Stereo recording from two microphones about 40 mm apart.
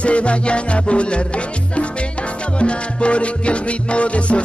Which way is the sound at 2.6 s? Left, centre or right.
Left.